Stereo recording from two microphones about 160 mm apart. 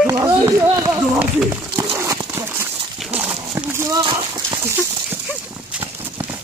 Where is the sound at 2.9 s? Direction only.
5° right (ahead or behind).